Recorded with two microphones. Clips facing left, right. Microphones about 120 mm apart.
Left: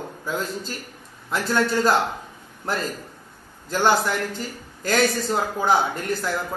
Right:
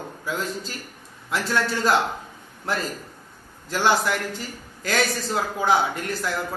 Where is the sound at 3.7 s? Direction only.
Centre (ahead or behind).